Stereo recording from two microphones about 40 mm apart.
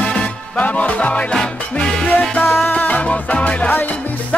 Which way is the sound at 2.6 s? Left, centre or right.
Left.